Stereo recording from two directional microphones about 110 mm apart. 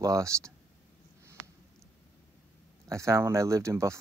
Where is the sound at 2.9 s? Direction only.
30° right (ahead or behind).